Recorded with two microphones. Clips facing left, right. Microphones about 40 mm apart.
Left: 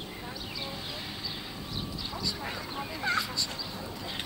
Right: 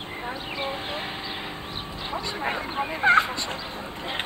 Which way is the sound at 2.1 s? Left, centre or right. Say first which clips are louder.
Right 9 dB; right.